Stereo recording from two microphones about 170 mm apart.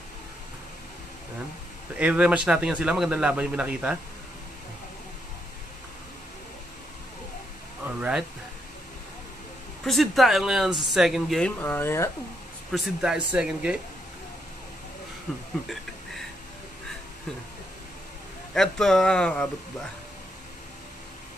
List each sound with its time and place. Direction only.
2.0 s speech: 5° right (ahead or behind)
7.8 s speech: 5° right (ahead or behind)
9.8 s speech: centre (ahead or behind)
12.7 s speech: centre (ahead or behind)
18.5 s speech: 5° left (ahead or behind)